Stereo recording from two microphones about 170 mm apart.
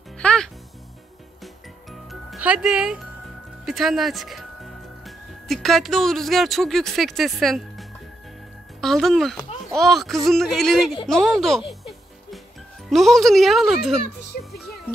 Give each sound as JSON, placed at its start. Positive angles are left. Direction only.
{"t": 0.2, "sound": "music", "side_deg": 5}
{"t": 3.6, "sound": "speech", "side_deg": 0}
{"t": 8.8, "sound": "speech", "side_deg": 0}
{"t": 11.1, "sound": "a sound", "side_deg": 5}
{"t": 12.9, "sound": "speech", "side_deg": 0}
{"t": 14.3, "sound": "music", "side_deg": 60}